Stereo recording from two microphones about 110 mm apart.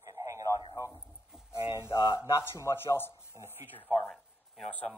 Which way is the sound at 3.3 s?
20° right (ahead or behind).